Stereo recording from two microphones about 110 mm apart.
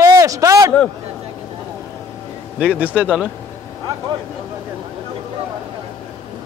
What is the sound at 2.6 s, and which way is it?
Speech, 10° right (ahead or behind).